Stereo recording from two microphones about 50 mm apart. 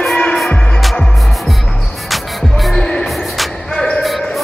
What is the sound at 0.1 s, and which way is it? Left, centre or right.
Music, centre.